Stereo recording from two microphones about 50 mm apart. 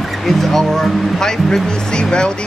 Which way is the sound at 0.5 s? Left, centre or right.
Centre.